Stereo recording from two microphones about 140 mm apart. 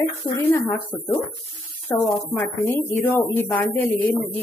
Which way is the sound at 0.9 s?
Centre (ahead or behind).